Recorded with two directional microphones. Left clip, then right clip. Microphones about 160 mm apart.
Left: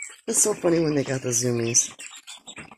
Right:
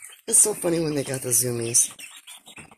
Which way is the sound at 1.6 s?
15° right (ahead or behind).